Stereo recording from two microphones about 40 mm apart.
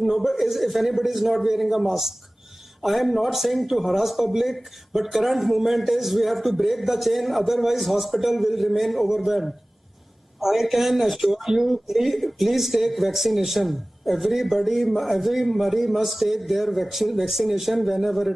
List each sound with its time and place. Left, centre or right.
0.0 s speech: centre